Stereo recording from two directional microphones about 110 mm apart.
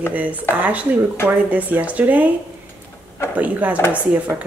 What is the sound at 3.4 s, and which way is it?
Speech, 15° right (ahead or behind).